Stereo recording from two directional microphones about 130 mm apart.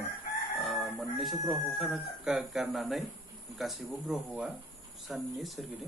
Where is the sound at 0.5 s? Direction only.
Centre (ahead or behind).